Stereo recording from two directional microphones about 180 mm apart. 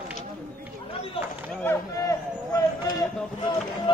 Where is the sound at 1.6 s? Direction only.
20° left (ahead or behind).